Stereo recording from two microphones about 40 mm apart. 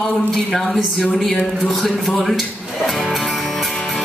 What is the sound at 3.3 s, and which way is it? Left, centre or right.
Music, centre.